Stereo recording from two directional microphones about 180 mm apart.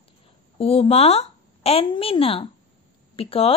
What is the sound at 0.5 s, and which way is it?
A woman's voice, 30° left (ahead or behind).